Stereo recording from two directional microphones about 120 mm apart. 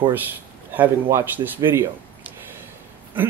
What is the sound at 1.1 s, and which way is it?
Speech, 15° right (ahead or behind).